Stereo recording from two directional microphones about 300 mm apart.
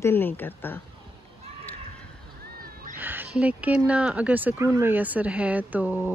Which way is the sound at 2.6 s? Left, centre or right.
Right.